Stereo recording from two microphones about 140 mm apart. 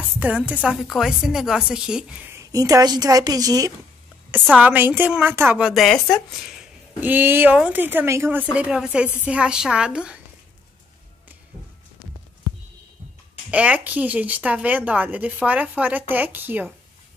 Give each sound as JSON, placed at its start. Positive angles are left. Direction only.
{"t": 0.2, "sound": "a woman's voice", "side_deg": -10}
{"t": 2.5, "sound": "a woman's voice", "side_deg": -25}
{"t": 4.6, "sound": "speech", "side_deg": -10}
{"t": 7.0, "sound": "speech", "side_deg": -15}
{"t": 13.5, "sound": "speech", "side_deg": -10}